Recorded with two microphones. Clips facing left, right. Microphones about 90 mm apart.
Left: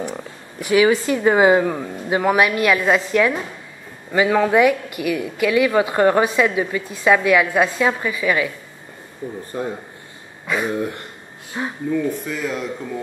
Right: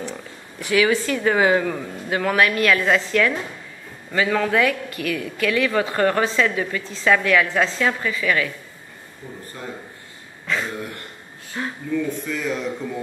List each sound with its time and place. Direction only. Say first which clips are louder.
0.6 s speech: left 3 dB; 20° left (ahead or behind)
9.5 s speech: left 11 dB; 30° left (ahead or behind)
10.4 s speech: left 5 dB; 15° left (ahead or behind)
12.3 s speech: left 1 dB; 5° left (ahead or behind)